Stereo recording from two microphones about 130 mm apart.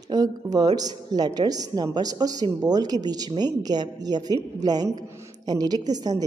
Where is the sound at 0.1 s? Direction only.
30° right (ahead or behind).